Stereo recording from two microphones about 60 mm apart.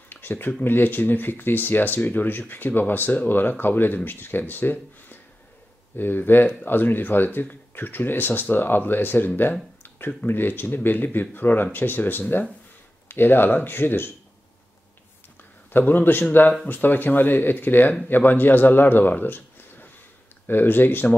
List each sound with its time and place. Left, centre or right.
0.1 s a sound: left
0.7 s speech: left
15.7 s speech: left